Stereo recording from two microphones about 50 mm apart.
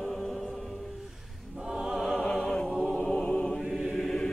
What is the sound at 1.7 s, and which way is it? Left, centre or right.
Music, centre.